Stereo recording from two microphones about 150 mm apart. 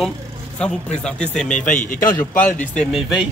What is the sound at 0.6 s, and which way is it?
Speech, 5° left (ahead or behind).